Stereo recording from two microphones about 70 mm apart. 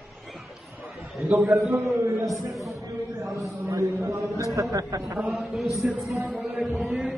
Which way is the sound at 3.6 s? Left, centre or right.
Right.